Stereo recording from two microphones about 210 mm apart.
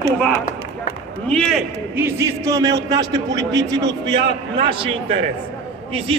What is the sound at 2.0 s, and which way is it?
A man's voice, 10° right (ahead or behind).